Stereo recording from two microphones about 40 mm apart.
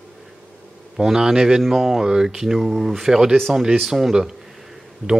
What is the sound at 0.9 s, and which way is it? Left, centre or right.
Speech, centre.